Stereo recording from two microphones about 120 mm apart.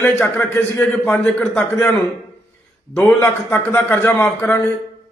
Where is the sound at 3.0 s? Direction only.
20° left (ahead or behind).